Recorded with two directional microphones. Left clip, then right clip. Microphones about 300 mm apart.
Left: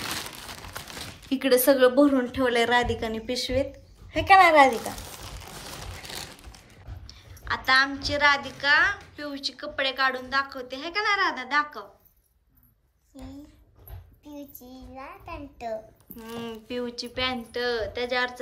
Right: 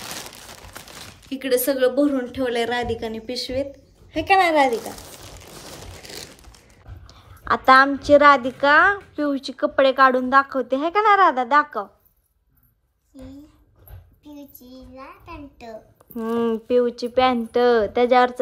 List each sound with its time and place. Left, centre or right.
0.8 s a sound: centre
1.3 s a woman's voice: centre
7.1 s a woman's voice: centre
13.1 s a child's voice: centre
16.2 s speech: centre